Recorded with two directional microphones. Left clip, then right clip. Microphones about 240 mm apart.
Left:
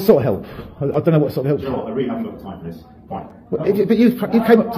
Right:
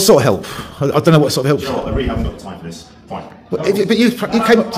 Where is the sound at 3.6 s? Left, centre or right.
Centre.